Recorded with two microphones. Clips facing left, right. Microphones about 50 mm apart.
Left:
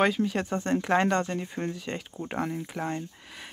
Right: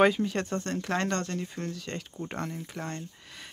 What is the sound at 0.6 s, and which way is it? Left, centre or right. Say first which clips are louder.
Speech: left 6 dB; centre.